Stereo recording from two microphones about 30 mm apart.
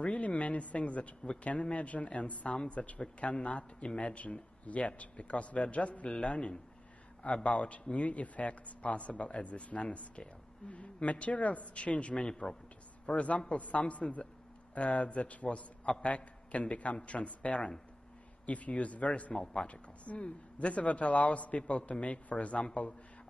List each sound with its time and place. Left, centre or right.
0.0 s a man's voice: left
2.4 s a man's voice: left
6.0 s a man's voice: left
19.3 s a man's voice: left
19.6 s a man's voice: left